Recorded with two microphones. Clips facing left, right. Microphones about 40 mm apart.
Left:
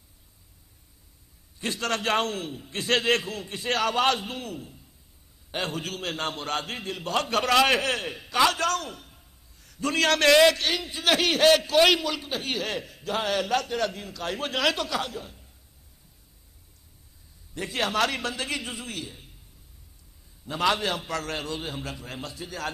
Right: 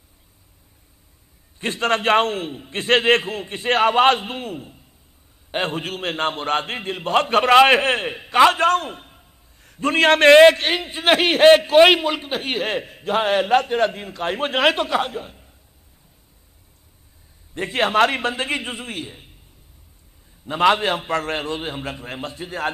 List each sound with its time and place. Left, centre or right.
1.6 s a man's voice: right
17.6 s a man's voice: right
20.4 s a man's voice: right